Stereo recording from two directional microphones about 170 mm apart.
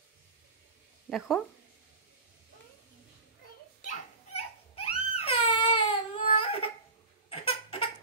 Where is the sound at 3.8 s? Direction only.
35° left (ahead or behind).